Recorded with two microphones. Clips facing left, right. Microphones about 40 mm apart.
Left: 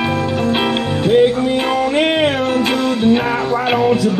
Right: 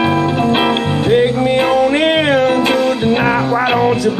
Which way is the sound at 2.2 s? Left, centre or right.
Centre.